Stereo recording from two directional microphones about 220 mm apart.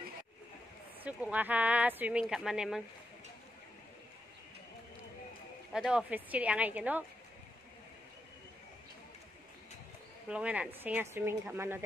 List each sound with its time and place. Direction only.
1.0 s speech: 5° right (ahead or behind)
5.7 s speech: 5° right (ahead or behind)
10.2 s speech: 5° right (ahead or behind)